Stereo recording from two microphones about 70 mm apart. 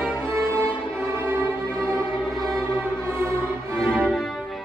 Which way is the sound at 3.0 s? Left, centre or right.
Right.